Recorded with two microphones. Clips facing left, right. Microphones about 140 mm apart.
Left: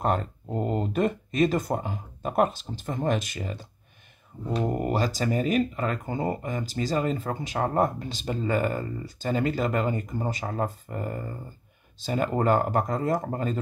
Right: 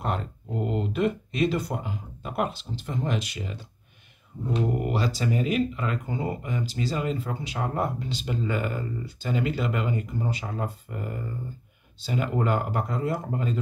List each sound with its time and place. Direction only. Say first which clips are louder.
0.0 s speech: left 4 dB; 45° left (ahead or behind)
4.7 s speech: left 1 dB; 40° left (ahead or behind)